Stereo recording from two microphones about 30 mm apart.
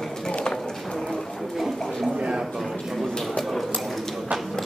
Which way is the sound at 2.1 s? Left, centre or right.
Right.